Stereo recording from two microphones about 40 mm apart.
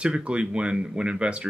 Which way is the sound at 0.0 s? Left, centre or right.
Right.